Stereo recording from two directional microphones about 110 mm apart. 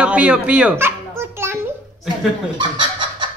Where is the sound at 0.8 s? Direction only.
20° right (ahead or behind).